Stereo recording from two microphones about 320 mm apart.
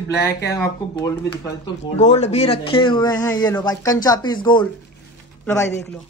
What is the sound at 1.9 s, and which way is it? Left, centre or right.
Speech, left.